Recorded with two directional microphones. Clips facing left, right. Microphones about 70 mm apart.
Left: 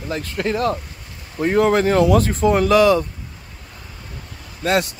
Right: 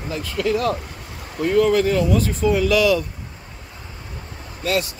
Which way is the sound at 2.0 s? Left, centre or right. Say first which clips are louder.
Left 4 dB; left.